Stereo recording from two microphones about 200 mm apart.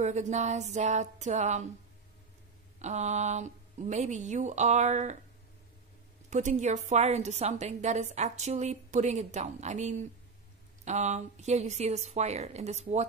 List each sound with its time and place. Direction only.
0.0 s a woman's voice: 35° right (ahead or behind)
2.8 s a woman's voice: 35° right (ahead or behind)
6.3 s a woman's voice: 35° right (ahead or behind)